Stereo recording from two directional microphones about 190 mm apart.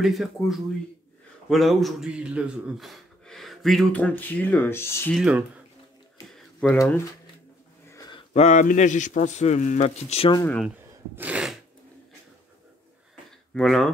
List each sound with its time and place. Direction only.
0.0 s speech: centre (ahead or behind)
5.1 s speech: 5° right (ahead or behind)
6.7 s speech: 10° left (ahead or behind)
7.9 s a sound: 25° left (ahead or behind)
8.3 s a man's voice: 40° left (ahead or behind)
10.4 s speech: 5° left (ahead or behind)
11.1 s a sound: 5° right (ahead or behind)
13.6 s speech: centre (ahead or behind)